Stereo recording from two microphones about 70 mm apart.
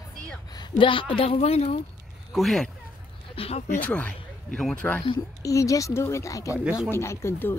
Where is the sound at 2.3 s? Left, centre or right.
Centre.